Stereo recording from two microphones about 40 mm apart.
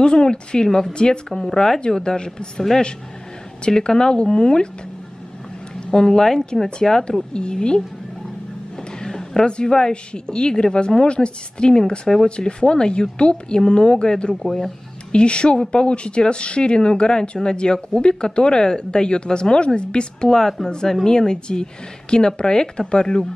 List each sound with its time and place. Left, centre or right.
0.0 s speech: left
0.9 s speech: left
3.6 s speech: centre
5.9 s speech: centre
9.0 s speech: centre
14.4 s speech: centre
15.1 s speech: left